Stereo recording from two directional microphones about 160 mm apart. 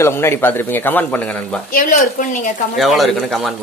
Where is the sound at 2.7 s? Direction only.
Centre (ahead or behind).